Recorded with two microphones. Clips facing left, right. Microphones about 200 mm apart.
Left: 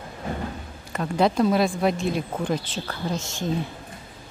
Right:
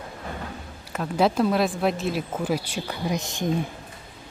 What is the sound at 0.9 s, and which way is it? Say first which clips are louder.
Speech: left 1 dB; 5° right (ahead or behind).